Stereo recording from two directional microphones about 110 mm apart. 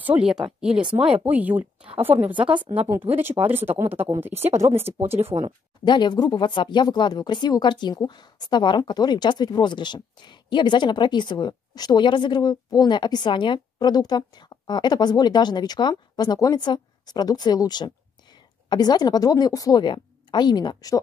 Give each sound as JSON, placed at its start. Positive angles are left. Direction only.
{"t": 0.0, "sound": "speech", "side_deg": -10}
{"t": 5.1, "sound": "speech", "side_deg": -70}
{"t": 5.9, "sound": "speech", "side_deg": 40}